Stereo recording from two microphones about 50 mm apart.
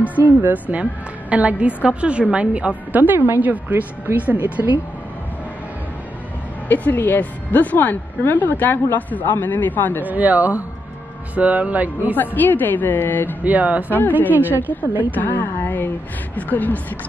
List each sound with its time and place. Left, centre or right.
0.0 s a woman's voice: right
2.9 s speech: right
6.7 s speech: left
10.0 s speech: right
12.2 s speech: left
13.4 s speech: right
13.8 s speech: left
14.3 s speech: right
15.1 s a sound: left
16.3 s speech: left